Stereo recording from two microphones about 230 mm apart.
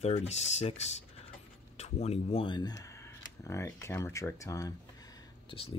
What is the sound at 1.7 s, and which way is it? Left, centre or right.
Speech, left.